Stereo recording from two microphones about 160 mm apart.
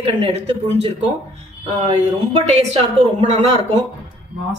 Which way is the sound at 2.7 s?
45° right (ahead or behind).